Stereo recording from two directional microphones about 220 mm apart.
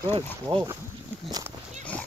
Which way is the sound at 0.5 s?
15° right (ahead or behind).